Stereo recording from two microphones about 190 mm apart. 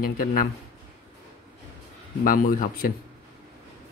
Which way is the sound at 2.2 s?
45° left (ahead or behind).